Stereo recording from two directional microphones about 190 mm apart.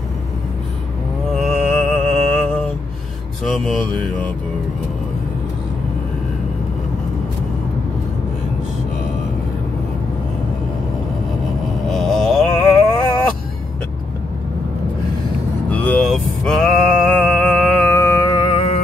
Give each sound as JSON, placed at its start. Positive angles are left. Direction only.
{"t": 1.3, "sound": "music", "side_deg": 0}
{"t": 3.4, "sound": "mantra", "side_deg": 0}
{"t": 11.9, "sound": "mantra", "side_deg": 0}
{"t": 15.7, "sound": "mantra", "side_deg": 5}
{"t": 17.9, "sound": "mantra", "side_deg": 15}